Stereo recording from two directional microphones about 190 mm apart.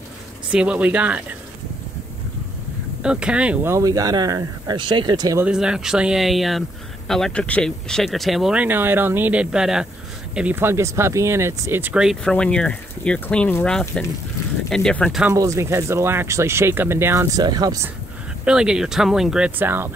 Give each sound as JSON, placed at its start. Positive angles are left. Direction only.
{"t": 0.5, "sound": "speech", "side_deg": -5}
{"t": 3.0, "sound": "speech", "side_deg": -5}
{"t": 5.4, "sound": "speech", "side_deg": -5}
{"t": 15.3, "sound": "speech", "side_deg": -15}
{"t": 18.4, "sound": "speech", "side_deg": -5}